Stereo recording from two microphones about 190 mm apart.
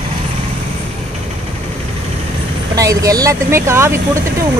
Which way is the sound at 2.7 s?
20° right (ahead or behind).